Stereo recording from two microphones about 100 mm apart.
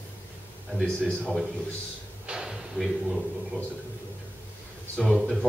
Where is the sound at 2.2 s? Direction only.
5° right (ahead or behind).